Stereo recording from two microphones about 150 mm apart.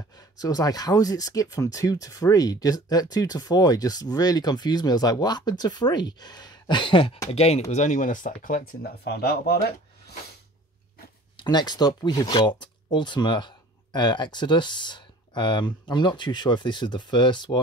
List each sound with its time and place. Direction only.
0.4 s speech: 25° left (ahead or behind); by 10.1 s 90° left
11.3 s speech: 30° left (ahead or behind)